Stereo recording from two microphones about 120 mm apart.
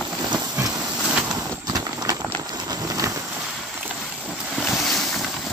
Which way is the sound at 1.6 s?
30° right (ahead or behind).